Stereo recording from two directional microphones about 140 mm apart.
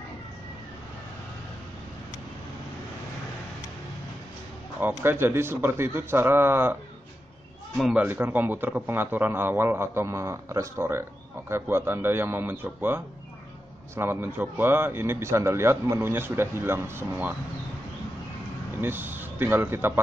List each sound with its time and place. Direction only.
4.7 s a man's voice: 15° right (ahead or behind)
7.9 s a man's voice: 15° right (ahead or behind)
18.8 s a man's voice: 15° right (ahead or behind)